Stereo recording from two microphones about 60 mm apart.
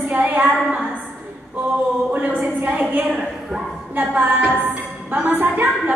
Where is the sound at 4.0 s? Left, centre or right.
Right.